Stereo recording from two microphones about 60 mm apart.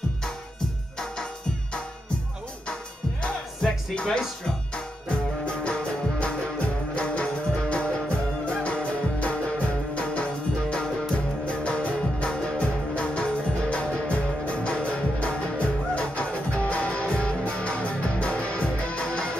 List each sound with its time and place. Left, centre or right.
3.2 s music: centre
5.4 s music: centre